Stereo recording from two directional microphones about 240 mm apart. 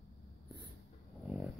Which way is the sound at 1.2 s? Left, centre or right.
Centre.